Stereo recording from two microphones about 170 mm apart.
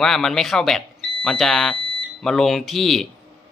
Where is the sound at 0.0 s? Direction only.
Centre (ahead or behind).